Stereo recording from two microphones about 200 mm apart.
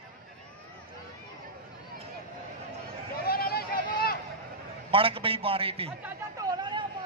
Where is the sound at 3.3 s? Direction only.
50° left (ahead or behind).